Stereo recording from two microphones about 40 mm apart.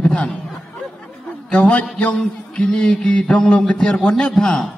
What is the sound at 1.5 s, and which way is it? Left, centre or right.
A man's voice, left.